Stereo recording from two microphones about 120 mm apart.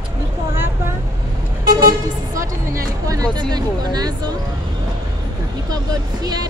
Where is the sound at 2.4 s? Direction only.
25° right (ahead or behind).